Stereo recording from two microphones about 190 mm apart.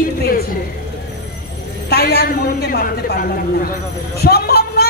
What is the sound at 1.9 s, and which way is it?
A woman's voice, 55° left (ahead or behind).